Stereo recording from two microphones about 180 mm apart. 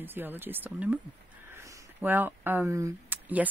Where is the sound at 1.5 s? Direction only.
15° right (ahead or behind).